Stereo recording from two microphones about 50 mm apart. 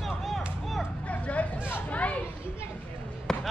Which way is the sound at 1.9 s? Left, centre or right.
Left.